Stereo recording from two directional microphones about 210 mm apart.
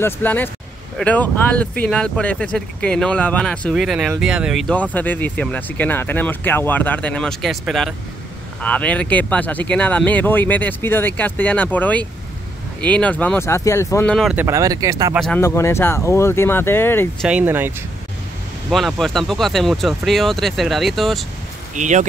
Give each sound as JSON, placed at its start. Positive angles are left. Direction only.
{"t": 0.0, "sound": "speech", "side_deg": 10}
{"t": 14.1, "sound": "speech", "side_deg": 0}
{"t": 14.4, "sound": "speech", "side_deg": -15}
{"t": 15.1, "sound": "speech", "side_deg": 0}
{"t": 15.4, "sound": "speech", "side_deg": 15}
{"t": 17.3, "sound": "speech", "side_deg": -10}
{"t": 18.7, "sound": "speech", "side_deg": 0}
{"t": 21.7, "sound": "speech", "side_deg": -35}